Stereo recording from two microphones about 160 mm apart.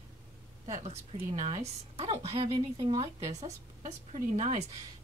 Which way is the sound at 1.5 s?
40° right (ahead or behind).